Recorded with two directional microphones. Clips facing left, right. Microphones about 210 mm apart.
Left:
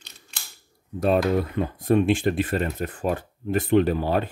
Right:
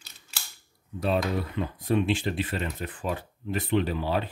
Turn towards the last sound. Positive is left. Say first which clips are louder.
# left 6 dB
turn(degrees=50)  # may be behind; listen again after turning